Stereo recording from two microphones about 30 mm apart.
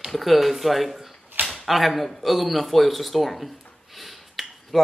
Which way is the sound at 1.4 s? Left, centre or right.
Right.